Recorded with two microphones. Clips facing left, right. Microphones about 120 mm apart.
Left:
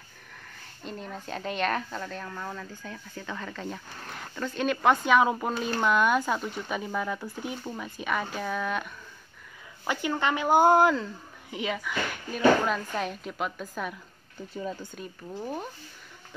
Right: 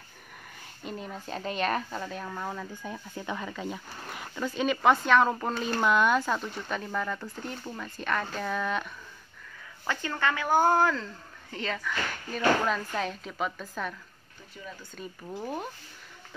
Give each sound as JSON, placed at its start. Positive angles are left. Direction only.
{"t": 0.8, "sound": "speech", "side_deg": -5}
{"t": 9.8, "sound": "speech", "side_deg": 15}
{"t": 14.5, "sound": "speech", "side_deg": 35}
{"t": 15.0, "sound": "speech", "side_deg": 0}